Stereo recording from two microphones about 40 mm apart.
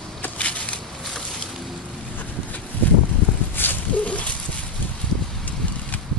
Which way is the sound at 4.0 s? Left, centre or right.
Left.